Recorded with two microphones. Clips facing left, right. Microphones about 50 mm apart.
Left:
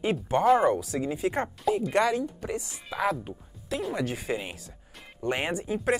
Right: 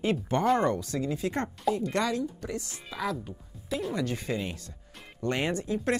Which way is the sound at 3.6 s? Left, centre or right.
Centre.